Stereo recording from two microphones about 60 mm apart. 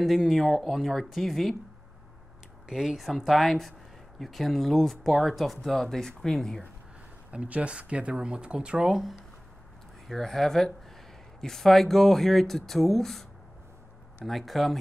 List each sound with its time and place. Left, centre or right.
0.0 s speech: centre
2.7 s speech: centre
7.2 s speech: right; by 9.2 s centre
10.0 s speech: centre